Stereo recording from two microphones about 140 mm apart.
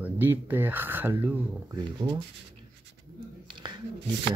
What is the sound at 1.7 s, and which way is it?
Speech, 30° right (ahead or behind).